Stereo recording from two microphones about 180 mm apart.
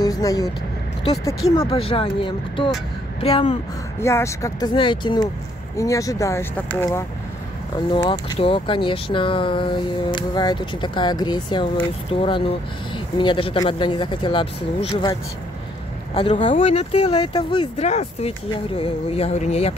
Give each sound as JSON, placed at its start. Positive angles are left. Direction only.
{"t": 0.0, "sound": "speech", "side_deg": 20}
{"t": 1.7, "sound": "speech", "side_deg": 30}
{"t": 4.0, "sound": "speech", "side_deg": 15}
{"t": 7.9, "sound": "speech", "side_deg": 25}
{"t": 16.2, "sound": "speech", "side_deg": 35}
{"t": 17.8, "sound": "speech", "side_deg": 40}